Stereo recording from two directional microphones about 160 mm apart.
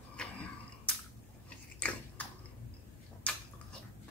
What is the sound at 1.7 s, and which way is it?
Biting, 10° left (ahead or behind).